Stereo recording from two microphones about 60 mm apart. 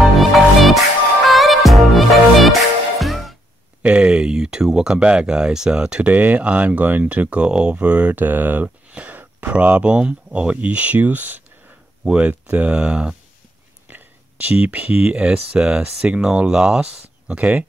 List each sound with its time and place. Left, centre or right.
0.0 s music: centre
3.8 s a sound: centre
4.6 s speech: centre
6.0 s speech: right
8.6 s a sound: right
9.4 s speech: right
12.0 s speech: right
13.8 s a sound: right
15.1 s speech: centre